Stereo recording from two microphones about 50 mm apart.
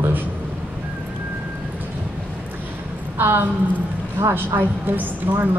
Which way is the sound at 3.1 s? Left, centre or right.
Right.